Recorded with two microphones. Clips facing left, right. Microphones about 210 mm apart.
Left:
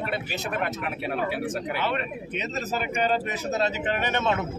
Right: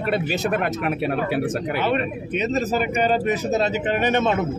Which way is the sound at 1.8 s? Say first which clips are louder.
Right 6 dB; 15° right (ahead or behind).